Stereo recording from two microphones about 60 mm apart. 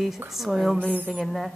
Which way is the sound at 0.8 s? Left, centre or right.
Centre.